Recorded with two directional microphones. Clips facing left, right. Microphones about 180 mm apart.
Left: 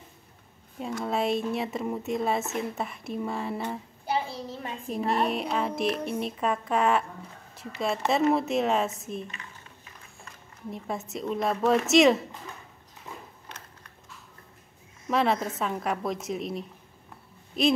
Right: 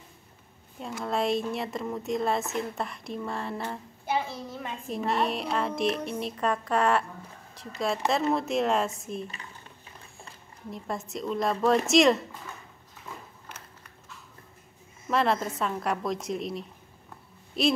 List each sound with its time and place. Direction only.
0.7 s music: centre (ahead or behind)
4.1 s child singing: 30° left (ahead or behind)
4.9 s music: centre (ahead or behind)
10.7 s music: centre (ahead or behind)
15.0 s music: centre (ahead or behind)